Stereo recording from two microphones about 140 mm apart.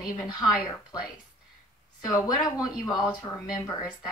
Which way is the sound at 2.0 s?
25° left (ahead or behind).